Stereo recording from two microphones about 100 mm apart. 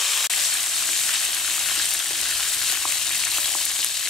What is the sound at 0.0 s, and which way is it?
Frying, centre (ahead or behind).